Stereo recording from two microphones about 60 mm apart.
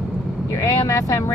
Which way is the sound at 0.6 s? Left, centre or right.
Left.